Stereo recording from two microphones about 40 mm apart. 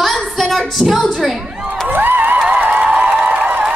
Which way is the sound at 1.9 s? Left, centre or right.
Right.